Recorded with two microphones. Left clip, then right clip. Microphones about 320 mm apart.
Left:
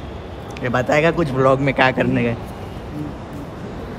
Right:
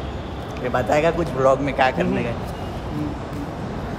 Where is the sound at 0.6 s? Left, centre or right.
Left.